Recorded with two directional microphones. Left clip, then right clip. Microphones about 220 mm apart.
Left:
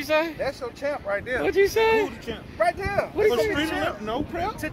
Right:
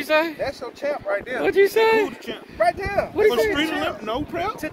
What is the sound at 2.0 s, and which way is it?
Speech, 50° right (ahead or behind).